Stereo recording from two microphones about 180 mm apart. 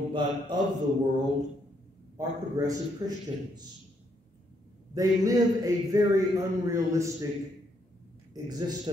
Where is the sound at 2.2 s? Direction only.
20° right (ahead or behind).